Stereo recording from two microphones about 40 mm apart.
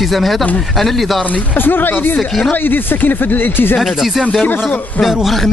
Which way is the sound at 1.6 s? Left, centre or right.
Left.